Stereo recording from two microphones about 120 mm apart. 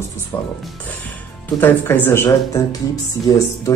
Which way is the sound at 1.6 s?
15° left (ahead or behind).